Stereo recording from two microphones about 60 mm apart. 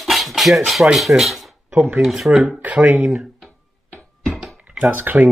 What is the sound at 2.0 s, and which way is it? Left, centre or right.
Speech, centre.